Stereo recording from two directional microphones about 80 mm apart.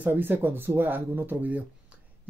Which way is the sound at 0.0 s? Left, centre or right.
Right.